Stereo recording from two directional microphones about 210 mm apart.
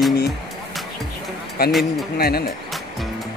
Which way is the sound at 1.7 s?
Centre (ahead or behind).